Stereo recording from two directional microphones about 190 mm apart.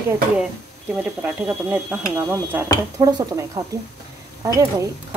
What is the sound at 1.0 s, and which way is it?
Speech, 5° right (ahead or behind).